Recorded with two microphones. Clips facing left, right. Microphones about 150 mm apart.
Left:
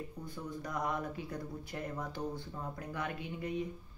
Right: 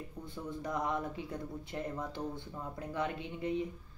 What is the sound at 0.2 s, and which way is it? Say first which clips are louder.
Speech: right 4 dB; 25° right (ahead or behind).